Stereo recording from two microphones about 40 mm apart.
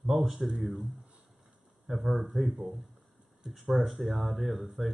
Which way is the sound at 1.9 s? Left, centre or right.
Centre.